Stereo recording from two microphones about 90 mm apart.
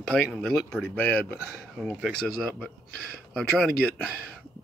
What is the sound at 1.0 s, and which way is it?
Speech, 20° left (ahead or behind).